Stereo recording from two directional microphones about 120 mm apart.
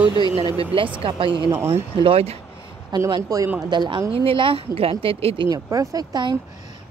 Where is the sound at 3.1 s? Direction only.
30° right (ahead or behind).